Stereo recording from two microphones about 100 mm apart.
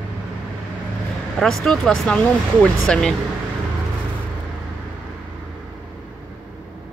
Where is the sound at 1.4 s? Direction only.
5° left (ahead or behind).